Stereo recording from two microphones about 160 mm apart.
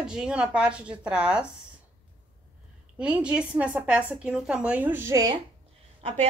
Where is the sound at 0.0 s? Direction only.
5° right (ahead or behind).